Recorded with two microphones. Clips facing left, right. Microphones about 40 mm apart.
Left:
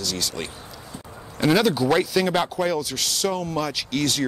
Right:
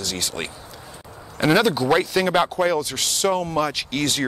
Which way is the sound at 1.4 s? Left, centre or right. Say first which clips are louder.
Right 1 dB; centre.